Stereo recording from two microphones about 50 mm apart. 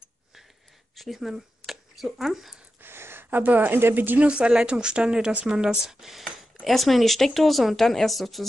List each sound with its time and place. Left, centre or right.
0.9 s speech: centre
2.8 s speech: right
4.2 s speech: right; by 8.5 s centre